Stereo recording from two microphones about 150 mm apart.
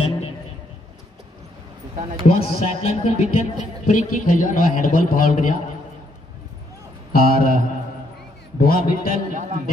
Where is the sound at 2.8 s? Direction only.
50° left (ahead or behind).